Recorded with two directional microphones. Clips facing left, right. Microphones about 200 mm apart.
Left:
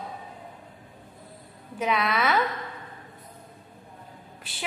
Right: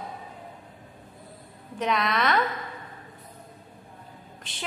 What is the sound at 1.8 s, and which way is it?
Speech, 5° left (ahead or behind).